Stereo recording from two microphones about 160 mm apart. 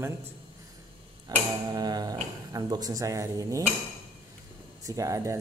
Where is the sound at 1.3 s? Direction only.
25° right (ahead or behind).